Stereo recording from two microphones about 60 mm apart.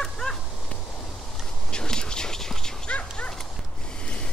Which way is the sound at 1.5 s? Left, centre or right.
Centre.